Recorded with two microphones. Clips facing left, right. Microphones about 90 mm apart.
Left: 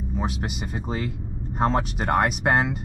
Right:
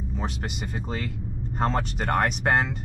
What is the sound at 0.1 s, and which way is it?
Speech, 5° left (ahead or behind).